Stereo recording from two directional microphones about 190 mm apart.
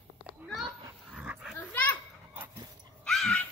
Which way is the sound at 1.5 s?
10° left (ahead or behind).